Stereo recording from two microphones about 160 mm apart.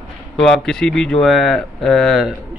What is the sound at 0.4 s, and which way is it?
A man's voice, centre (ahead or behind).